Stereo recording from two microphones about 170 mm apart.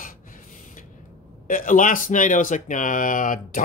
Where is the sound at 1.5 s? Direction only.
50° left (ahead or behind).